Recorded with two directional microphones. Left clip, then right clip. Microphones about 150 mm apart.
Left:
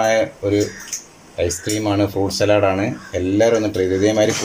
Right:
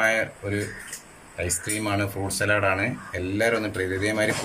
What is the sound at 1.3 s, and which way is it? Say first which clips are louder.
Speech: left 8 dB; 45° left (ahead or behind).